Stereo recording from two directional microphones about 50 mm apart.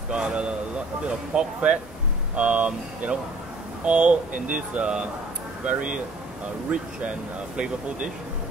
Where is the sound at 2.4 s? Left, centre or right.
Right.